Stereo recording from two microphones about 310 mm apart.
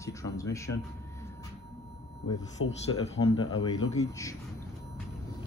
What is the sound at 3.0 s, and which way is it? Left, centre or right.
Speech, centre.